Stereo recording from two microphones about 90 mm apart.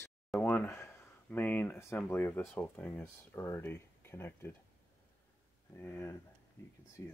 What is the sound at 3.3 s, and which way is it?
Speech, 30° left (ahead or behind).